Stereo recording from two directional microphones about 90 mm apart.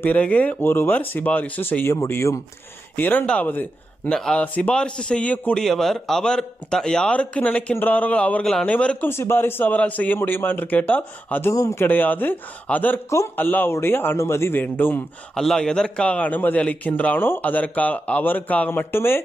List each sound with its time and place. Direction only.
0.0 s a man's voice: 15° left (ahead or behind); by 2.4 s 35° left (ahead or behind)
3.0 s a man's voice: 20° left (ahead or behind)
4.1 s a man's voice: 10° left (ahead or behind)
5.6 s a man's voice: 5° left (ahead or behind)
9.1 s a man's voice: 25° left (ahead or behind)
11.5 s speech: 40° left (ahead or behind)
11.8 s a man's voice: 20° left (ahead or behind)
15.3 s a man's voice: 5° left (ahead or behind); by 19.2 s 25° left (ahead or behind)